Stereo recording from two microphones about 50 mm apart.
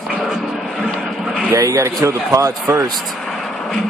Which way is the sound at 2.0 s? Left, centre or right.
Right.